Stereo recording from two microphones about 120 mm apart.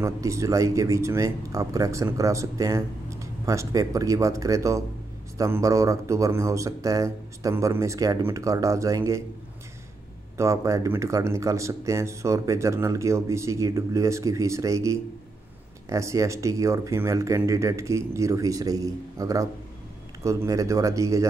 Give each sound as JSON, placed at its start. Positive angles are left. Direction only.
{"t": 0.0, "sound": "speech", "side_deg": -25}
{"t": 10.3, "sound": "speech", "side_deg": -25}